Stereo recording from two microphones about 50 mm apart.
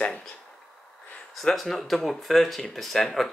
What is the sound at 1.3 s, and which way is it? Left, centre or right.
Speech, centre.